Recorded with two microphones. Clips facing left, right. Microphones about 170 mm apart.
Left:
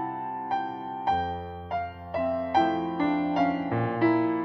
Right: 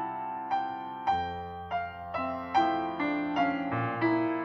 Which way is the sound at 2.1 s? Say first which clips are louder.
Left 5 dB; 35° left (ahead or behind).